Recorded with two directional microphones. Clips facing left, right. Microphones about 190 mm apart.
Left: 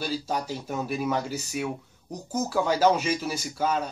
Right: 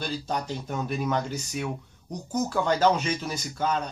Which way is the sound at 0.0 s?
5° left (ahead or behind).